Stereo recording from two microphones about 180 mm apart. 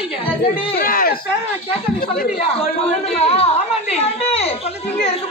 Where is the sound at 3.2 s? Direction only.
35° left (ahead or behind).